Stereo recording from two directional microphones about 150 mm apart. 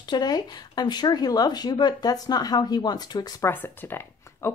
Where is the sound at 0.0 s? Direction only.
25° left (ahead or behind).